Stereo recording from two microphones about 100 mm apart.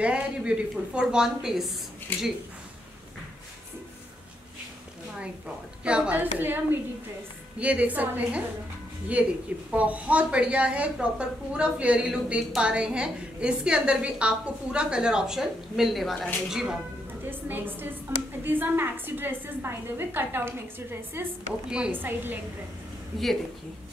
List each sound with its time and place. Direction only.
0.0 s a woman's voice: 10° right (ahead or behind)
2.1 s speech: 20° left (ahead or behind)
5.9 s a woman's voice: 10° right (ahead or behind)
9.7 s a woman's voice: 15° right (ahead or behind)
17.3 s a woman's voice: 20° right (ahead or behind)
21.6 s a woman's voice: 10° right (ahead or behind)
21.9 s a woman's voice: 20° right (ahead or behind)